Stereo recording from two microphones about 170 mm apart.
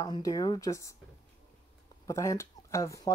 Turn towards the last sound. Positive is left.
turn(degrees=20)  # may be behind; listen again after turning